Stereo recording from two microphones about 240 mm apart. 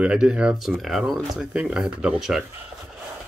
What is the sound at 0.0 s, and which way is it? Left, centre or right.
Speech, centre.